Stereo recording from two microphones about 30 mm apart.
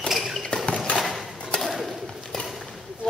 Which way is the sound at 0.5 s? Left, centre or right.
Left.